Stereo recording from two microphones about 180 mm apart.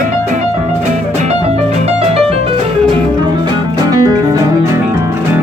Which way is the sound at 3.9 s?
20° right (ahead or behind).